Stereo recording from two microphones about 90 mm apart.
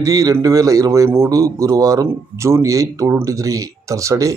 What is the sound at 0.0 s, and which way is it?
A man's voice, 40° right (ahead or behind).